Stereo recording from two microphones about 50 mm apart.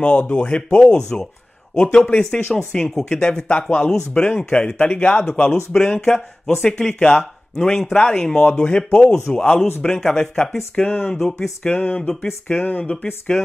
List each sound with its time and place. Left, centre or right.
0.0 s speech: left
11.1 s speech: centre
11.7 s speech: left